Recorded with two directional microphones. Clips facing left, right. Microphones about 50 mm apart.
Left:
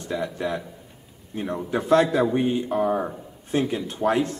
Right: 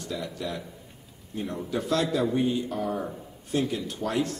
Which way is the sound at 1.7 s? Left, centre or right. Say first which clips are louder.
Left 7 dB; left.